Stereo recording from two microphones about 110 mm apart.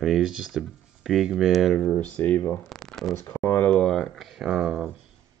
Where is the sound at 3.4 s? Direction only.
20° left (ahead or behind).